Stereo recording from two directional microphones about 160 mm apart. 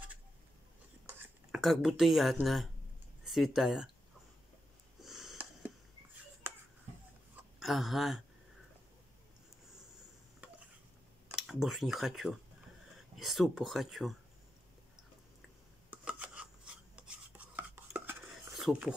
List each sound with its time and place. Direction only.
1.5 s speech: centre (ahead or behind)
5.0 s a sound: centre (ahead or behind)
6.4 s finger snapping: 15° right (ahead or behind)
7.6 s speech: centre (ahead or behind)
11.3 s speech: centre (ahead or behind)
15.9 s chopping: 5° right (ahead or behind)
18.5 s speech: 5° right (ahead or behind)